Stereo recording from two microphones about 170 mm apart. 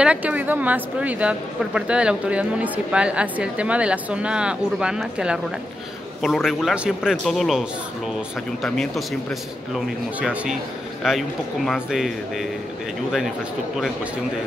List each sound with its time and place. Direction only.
0.0 s speech: 10° right (ahead or behind)
8.6 s speech: centre (ahead or behind)